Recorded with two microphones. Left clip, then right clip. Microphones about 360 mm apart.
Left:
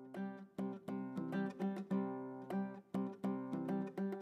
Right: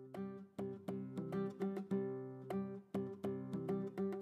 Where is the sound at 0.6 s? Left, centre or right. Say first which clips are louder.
Even; left.